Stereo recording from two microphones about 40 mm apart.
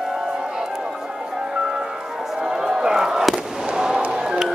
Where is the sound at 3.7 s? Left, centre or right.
Centre.